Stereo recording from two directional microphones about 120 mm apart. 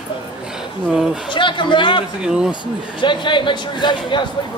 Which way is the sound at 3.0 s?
40° left (ahead or behind).